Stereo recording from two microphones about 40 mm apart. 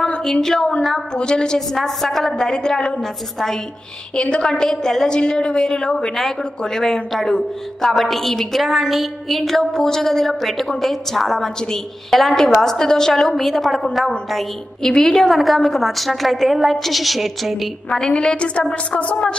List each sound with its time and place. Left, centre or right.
0.2 s a woman's voice: centre
1.7 s a woman's voice: centre
3.0 s a woman's voice: centre
4.1 s a woman's voice: left; by 13.8 s centre
14.9 s a woman's voice: centre
17.9 s a woman's voice: centre; by 19.2 s left